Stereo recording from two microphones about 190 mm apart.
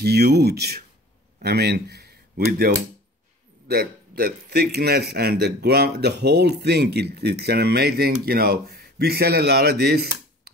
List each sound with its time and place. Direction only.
0.0 s speech: 60° right (ahead or behind)